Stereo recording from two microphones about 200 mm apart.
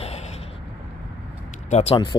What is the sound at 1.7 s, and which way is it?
Speech, 30° left (ahead or behind).